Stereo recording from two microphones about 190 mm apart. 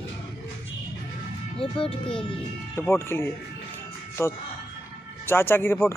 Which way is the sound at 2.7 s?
15° left (ahead or behind).